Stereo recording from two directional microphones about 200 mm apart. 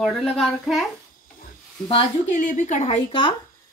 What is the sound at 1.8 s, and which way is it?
Speech, 30° left (ahead or behind).